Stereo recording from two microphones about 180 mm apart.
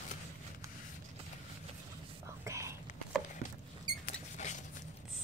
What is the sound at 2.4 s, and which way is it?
Whispering, 15° right (ahead or behind).